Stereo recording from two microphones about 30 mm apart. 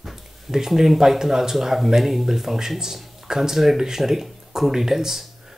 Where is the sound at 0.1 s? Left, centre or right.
Centre.